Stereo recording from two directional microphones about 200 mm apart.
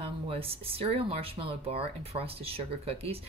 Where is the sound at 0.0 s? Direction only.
30° right (ahead or behind).